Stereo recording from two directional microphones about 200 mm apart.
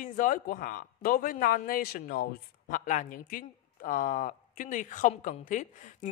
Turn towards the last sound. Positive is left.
turn(degrees=40)  # may be behind; listen again after turning